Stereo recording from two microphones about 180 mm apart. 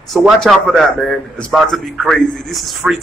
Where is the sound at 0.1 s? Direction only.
Centre (ahead or behind).